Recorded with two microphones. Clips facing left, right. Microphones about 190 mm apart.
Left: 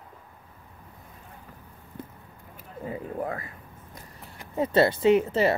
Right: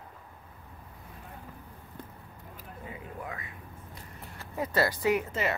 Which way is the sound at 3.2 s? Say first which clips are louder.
Left 9 dB; 50° left (ahead or behind).